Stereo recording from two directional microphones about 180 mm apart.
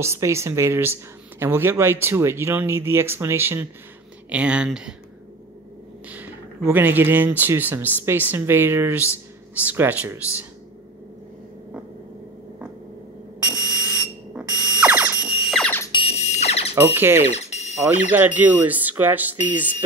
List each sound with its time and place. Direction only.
0.0 s speech: 15° right (ahead or behind)
6.0 s speech: 10° right (ahead or behind)
13.4 s fire alarm: 5° right (ahead or behind)
15.9 s a sound: 35° left (ahead or behind)
16.7 s speech: 10° right (ahead or behind)
17.2 s alarm: 35° left (ahead or behind)
18.1 s speech: 10° right (ahead or behind)